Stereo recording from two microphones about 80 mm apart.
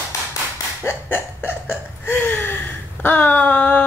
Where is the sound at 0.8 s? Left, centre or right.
Left.